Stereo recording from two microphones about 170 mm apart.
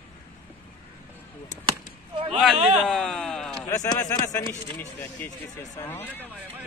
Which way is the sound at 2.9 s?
Centre (ahead or behind).